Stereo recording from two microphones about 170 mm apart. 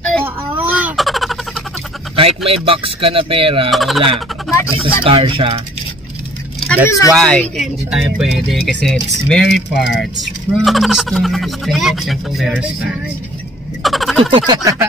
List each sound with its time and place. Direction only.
0.2 s a sound: 10° right (ahead or behind)
2.1 s speech: 35° right (ahead or behind)
3.7 s speech: centre (ahead or behind)
5.0 s speech: 30° right (ahead or behind)
6.7 s speech: 15° left (ahead or behind)
7.2 s speech: 5° left (ahead or behind)
13.8 s a sound: centre (ahead or behind)
14.3 s speech: 20° right (ahead or behind)